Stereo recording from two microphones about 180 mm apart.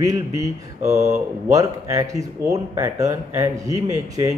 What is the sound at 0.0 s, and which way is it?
Speech, 20° right (ahead or behind).